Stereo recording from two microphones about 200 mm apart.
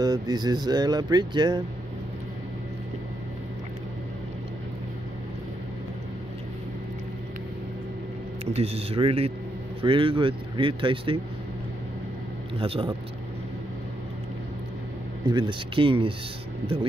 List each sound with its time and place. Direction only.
0.0 s speech: 20° right (ahead or behind)
8.5 s speech: 30° right (ahead or behind)
12.5 s speech: 30° right (ahead or behind)
15.2 s speech: 25° right (ahead or behind)